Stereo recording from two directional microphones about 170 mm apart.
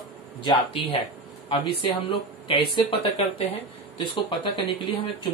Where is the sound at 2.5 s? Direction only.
30° left (ahead or behind).